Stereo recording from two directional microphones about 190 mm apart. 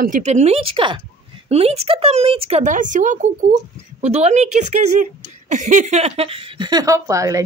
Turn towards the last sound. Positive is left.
turn(degrees=-15)  # may be behind; listen again after turning